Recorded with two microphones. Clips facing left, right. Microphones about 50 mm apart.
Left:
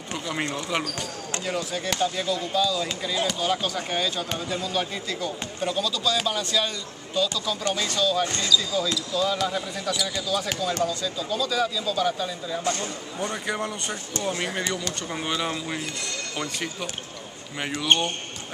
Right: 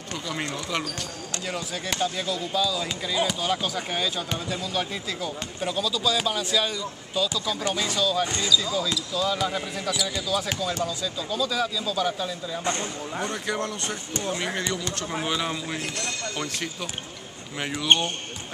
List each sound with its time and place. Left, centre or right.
0.1 s speech: centre
1.4 s speech: centre
12.6 s speech: right
13.3 s speech: centre